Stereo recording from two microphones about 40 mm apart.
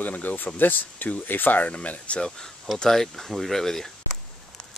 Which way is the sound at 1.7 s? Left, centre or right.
Left.